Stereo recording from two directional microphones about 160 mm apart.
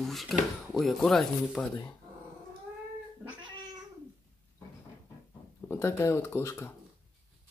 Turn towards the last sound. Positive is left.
turn(degrees=15)  # may be behind; listen again after turning